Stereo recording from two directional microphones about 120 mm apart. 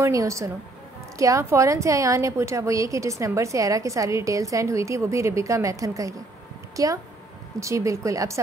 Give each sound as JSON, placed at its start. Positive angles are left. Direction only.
{"t": 0.0, "sound": "a woman's voice", "side_deg": -25}